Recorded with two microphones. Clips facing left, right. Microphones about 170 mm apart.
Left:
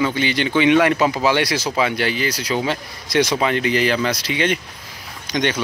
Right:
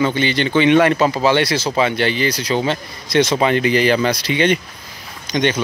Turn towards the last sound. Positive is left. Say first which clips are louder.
# right 3 dB
turn(degrees=10)  # may be behind; listen again after turning